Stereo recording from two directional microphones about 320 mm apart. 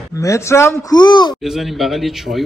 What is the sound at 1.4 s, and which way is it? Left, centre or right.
Speech, centre.